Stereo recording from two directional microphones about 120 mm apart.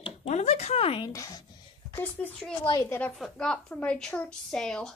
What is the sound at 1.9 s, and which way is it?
A woman's voice, 15° left (ahead or behind).